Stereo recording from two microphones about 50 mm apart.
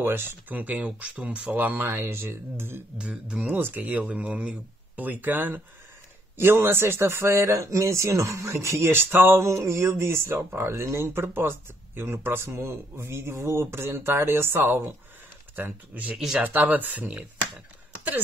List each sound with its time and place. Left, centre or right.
0.0 s speech: right
1.9 s speech: right
3.0 s speech: right
3.5 s speech: right
6.3 s speech: right
9.4 s a sound: right
10.2 s speech: right
15.5 s speech: right